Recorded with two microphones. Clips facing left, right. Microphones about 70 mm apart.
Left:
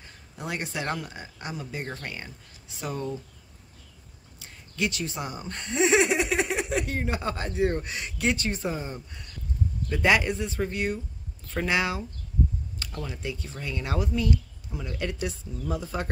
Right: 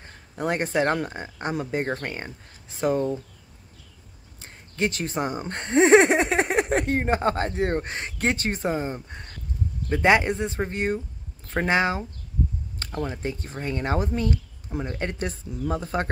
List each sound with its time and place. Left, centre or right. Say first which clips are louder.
0.0 s speech: right 9 dB; right
4.4 s speech: right 3 dB; right